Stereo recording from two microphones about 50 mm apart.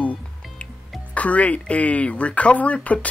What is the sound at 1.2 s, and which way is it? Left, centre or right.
Speech, left.